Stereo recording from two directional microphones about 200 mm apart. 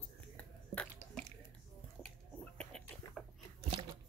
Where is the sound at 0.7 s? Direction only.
5° left (ahead or behind).